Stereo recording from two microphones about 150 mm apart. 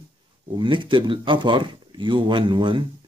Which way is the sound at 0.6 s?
30° right (ahead or behind).